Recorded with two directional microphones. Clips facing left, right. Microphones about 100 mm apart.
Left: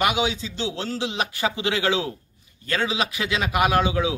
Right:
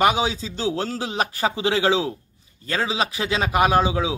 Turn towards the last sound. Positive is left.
turn(degrees=-30)  # may be behind; listen again after turning